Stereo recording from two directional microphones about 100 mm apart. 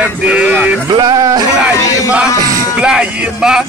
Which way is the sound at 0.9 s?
40° right (ahead or behind).